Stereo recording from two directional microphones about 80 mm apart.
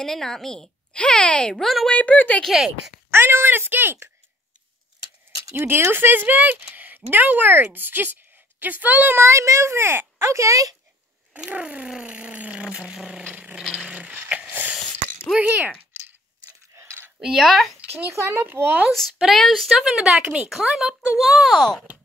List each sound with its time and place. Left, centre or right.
0.0 s speech: centre
1.9 s speech: centre
2.4 s a woman's voice: centre
3.1 s speech: right
5.5 s speech: right
11.3 s a sound: centre
13.2 s rattle: right
13.6 s rattle: centre
13.8 s a sound: centre
15.3 s speech: centre
16.7 s a sound: right
17.2 s a woman's voice: centre
17.7 s speech: right
18.9 s a woman's voice: centre